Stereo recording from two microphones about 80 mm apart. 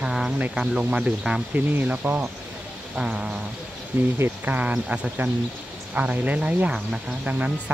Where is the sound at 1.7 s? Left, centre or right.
Right.